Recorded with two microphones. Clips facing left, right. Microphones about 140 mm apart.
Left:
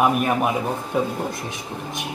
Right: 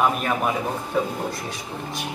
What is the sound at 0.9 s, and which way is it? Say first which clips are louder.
Speech: left 1 dB; 15° left (ahead or behind).